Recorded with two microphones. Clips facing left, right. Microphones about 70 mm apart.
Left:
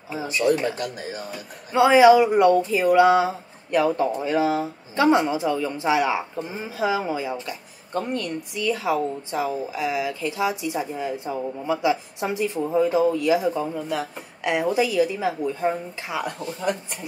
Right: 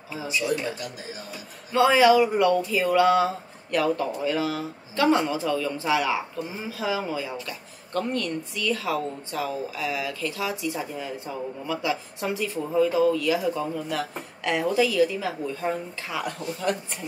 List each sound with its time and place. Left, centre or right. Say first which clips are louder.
0.3 s speech: left 6 dB; left
1.7 s speech: left 4 dB; centre